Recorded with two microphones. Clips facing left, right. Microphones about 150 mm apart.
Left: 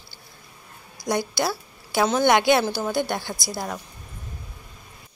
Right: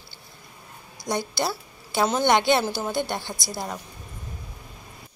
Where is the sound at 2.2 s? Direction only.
10° left (ahead or behind).